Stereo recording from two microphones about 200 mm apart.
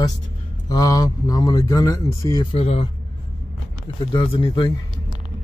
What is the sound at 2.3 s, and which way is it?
Speech, 30° left (ahead or behind).